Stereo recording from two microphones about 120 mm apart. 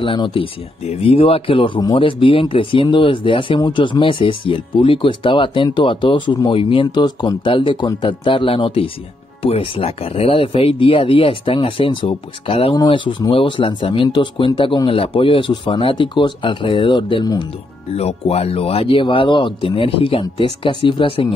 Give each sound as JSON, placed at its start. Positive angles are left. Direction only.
{"t": 0.0, "sound": "speech", "side_deg": 45}
{"t": 12.7, "sound": "speech", "side_deg": 40}
{"t": 17.9, "sound": "speech", "side_deg": 60}